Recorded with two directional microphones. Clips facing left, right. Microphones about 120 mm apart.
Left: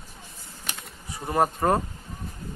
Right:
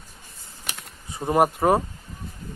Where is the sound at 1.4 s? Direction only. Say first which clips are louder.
Right 3 dB; 10° right (ahead or behind).